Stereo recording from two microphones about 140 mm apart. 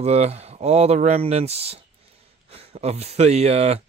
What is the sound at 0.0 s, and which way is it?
Speech, 50° right (ahead or behind).